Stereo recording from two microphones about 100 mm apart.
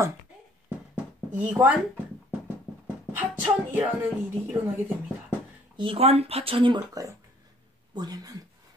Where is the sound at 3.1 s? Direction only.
20° right (ahead or behind).